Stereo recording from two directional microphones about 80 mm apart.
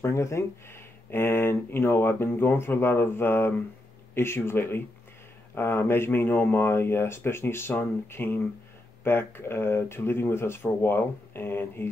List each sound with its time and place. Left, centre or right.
0.0 s speech: left